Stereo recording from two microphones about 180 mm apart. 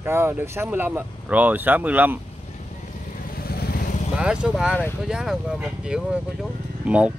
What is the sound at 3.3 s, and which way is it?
Vehicle, 55° left (ahead or behind).